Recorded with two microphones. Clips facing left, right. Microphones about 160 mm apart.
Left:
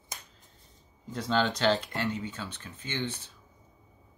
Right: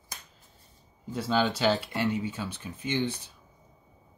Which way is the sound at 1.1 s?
5° right (ahead or behind).